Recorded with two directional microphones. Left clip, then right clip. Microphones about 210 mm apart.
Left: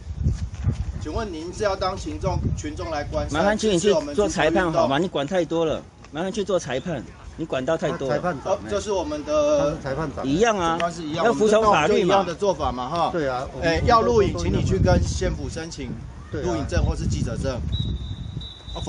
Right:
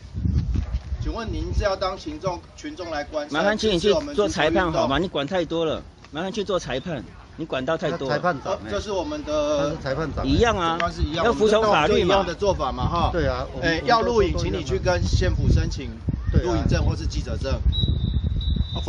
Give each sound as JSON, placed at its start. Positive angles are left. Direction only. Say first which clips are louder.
{"t": 1.1, "sound": "speech", "louder": "left 2 dB", "side_deg": 5}
{"t": 3.3, "sound": "speech", "louder": "even", "side_deg": -10}
{"t": 8.1, "sound": "a sound", "louder": "right 3 dB", "side_deg": -35}
{"t": 8.5, "sound": "speech", "louder": "left 3 dB", "side_deg": 10}
{"t": 9.6, "sound": "a sound", "louder": "left 1 dB", "side_deg": -30}
{"t": 10.2, "sound": "a man's voice", "louder": "left 1 dB", "side_deg": -10}
{"t": 13.1, "sound": "a man's voice", "louder": "even", "side_deg": -25}
{"t": 13.6, "sound": "a man's voice", "louder": "left 2 dB", "side_deg": 5}
{"t": 16.3, "sound": "a man's voice", "louder": "right 1 dB", "side_deg": -30}
{"t": 16.7, "sound": "a man's voice", "louder": "even", "side_deg": 0}